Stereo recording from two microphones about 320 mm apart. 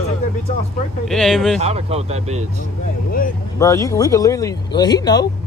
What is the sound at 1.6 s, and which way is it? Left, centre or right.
Speech, centre.